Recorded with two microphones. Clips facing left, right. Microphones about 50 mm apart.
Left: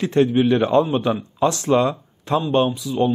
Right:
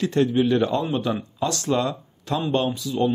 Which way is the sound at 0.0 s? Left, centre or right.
Left.